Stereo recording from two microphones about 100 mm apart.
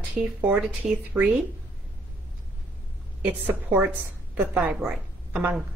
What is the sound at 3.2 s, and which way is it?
A woman's voice, 15° right (ahead or behind).